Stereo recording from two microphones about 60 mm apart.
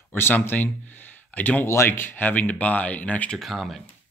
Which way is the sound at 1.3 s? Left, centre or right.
Left.